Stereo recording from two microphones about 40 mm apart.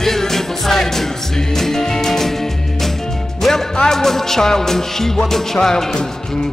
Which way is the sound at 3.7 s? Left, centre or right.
Centre.